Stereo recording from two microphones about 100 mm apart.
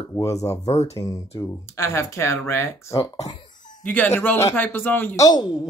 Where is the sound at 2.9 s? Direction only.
35° left (ahead or behind).